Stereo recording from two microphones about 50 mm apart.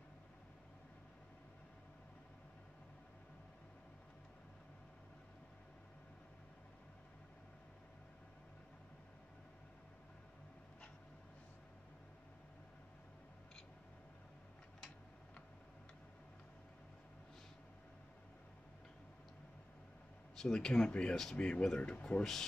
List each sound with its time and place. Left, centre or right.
20.3 s speech: centre
22.2 s speech: centre